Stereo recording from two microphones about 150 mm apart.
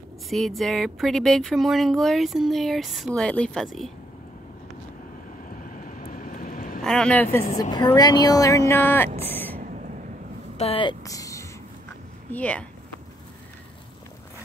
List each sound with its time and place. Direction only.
0.3 s speech: centre (ahead or behind)
5.6 s vehicle: 65° left (ahead or behind)
6.8 s speech: 5° left (ahead or behind)
7.7 s speech: 25° left (ahead or behind)
9.6 s vehicle: 60° right (ahead or behind)
10.6 s speech: 35° left (ahead or behind)
12.3 s speech: 10° left (ahead or behind)